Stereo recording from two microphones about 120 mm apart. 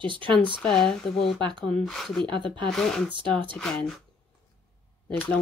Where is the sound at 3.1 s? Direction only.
45° right (ahead or behind).